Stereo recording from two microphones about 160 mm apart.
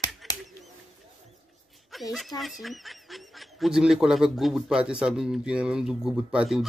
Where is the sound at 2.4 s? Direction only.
Centre (ahead or behind).